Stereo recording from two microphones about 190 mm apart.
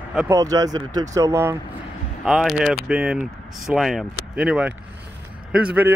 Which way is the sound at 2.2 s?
Centre (ahead or behind).